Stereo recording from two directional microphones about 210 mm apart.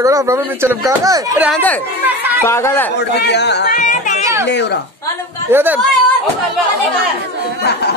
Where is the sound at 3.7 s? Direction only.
40° left (ahead or behind).